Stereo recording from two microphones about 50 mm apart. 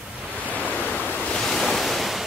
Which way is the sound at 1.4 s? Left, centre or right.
Centre.